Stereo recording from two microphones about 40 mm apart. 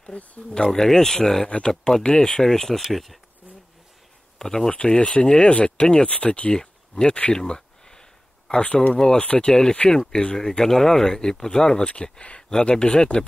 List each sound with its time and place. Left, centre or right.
0.4 s speech: left
0.7 s speech: centre
2.9 s speech: centre
4.4 s speech: centre
4.7 s speech: left
6.5 s speech: centre
7.3 s a sound: centre
8.5 s speech: left
9.2 s speech: left
9.5 s speech: centre
11.9 s speech: left